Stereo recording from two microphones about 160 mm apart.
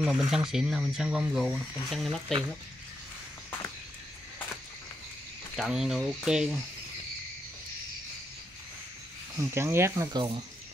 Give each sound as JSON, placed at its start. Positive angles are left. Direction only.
{"t": 0.0, "sound": "speech", "side_deg": -5}
{"t": 5.6, "sound": "speech", "side_deg": -5}
{"t": 9.4, "sound": "speech", "side_deg": -15}
{"t": 10.1, "sound": "speech", "side_deg": -25}